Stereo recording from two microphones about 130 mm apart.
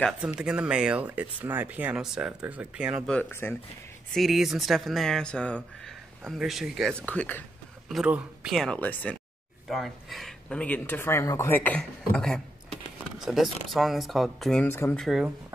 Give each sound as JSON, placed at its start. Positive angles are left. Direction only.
{"t": 0.4, "sound": "speech", "side_deg": -5}
{"t": 3.1, "sound": "speech", "side_deg": 15}
{"t": 4.1, "sound": "speech", "side_deg": 0}
{"t": 7.0, "sound": "speech", "side_deg": 10}
{"t": 7.9, "sound": "speech", "side_deg": -5}
{"t": 8.5, "sound": "speech", "side_deg": 10}
{"t": 9.7, "sound": "speech", "side_deg": 0}
{"t": 14.7, "sound": "speech", "side_deg": 15}
{"t": 15.0, "sound": "speech", "side_deg": -5}